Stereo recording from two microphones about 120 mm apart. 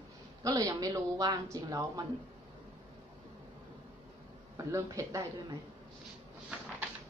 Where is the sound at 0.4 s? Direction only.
30° right (ahead or behind).